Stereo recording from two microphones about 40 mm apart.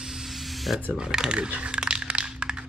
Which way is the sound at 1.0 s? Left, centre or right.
Centre.